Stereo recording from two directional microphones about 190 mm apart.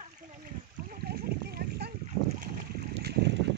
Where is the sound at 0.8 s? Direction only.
55° right (ahead or behind).